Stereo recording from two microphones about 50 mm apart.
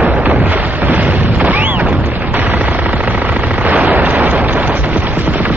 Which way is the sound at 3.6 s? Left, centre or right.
Right.